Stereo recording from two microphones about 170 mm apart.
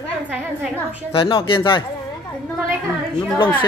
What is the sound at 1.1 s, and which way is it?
Speech, 30° left (ahead or behind).